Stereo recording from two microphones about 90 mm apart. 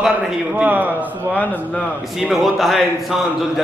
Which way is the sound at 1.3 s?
15° left (ahead or behind).